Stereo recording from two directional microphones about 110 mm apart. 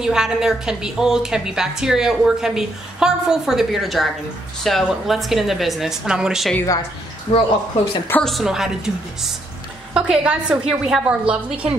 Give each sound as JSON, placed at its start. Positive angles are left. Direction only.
{"t": 0.0, "sound": "a woman's voice", "side_deg": -5}
{"t": 7.3, "sound": "speech", "side_deg": 65}
{"t": 8.2, "sound": "a woman's voice", "side_deg": 0}